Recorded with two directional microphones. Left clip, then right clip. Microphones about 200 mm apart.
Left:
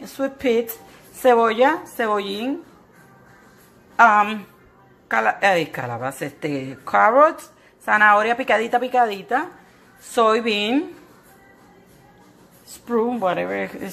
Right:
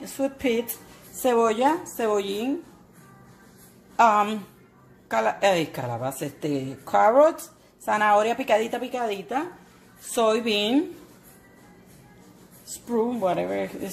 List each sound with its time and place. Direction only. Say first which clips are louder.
0.2 s a woman's voice: left 5 dB; centre (ahead or behind)
3.9 s a woman's voice: left 5 dB; centre (ahead or behind)
12.7 s a woman's voice: left 4 dB; centre (ahead or behind)